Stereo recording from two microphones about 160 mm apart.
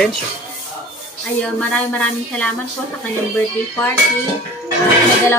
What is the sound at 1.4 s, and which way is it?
A woman's voice, 10° left (ahead or behind).